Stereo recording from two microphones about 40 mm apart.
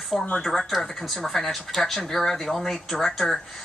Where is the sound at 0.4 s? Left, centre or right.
Centre.